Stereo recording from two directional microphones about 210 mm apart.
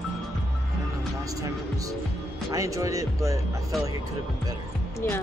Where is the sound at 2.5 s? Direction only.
15° right (ahead or behind).